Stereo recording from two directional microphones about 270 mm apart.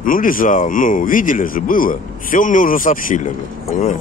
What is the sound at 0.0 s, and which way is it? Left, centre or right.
Speech, left.